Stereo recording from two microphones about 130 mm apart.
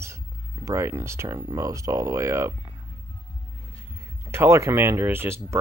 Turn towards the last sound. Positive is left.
turn(degrees=-20)  # may be behind; listen again after turning